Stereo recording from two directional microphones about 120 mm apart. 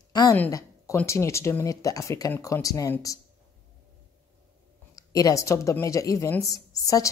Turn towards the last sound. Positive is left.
turn(degrees=30)  # may be behind; listen again after turning